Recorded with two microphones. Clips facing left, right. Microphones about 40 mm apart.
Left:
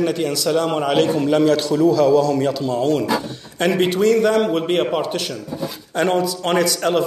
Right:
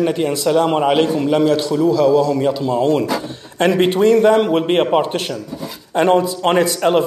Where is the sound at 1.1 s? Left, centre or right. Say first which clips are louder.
Right 1 dB; centre.